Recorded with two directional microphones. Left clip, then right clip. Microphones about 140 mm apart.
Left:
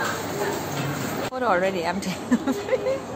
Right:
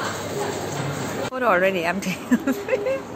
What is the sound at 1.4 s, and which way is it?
Speech, 20° right (ahead or behind).